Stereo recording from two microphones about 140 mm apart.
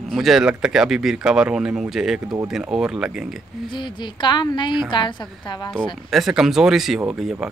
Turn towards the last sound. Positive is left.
turn(degrees=-5)  # may be behind; listen again after turning